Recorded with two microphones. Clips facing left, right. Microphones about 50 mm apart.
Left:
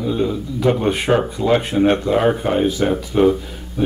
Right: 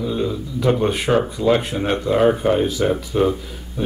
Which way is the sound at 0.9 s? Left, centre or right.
Centre.